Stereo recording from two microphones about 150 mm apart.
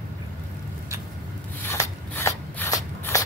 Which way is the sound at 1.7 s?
20° left (ahead or behind).